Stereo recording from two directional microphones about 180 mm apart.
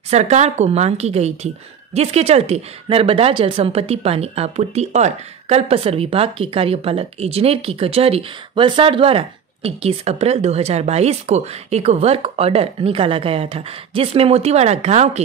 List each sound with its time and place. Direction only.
0.1 s a woman's voice: 40° right (ahead or behind)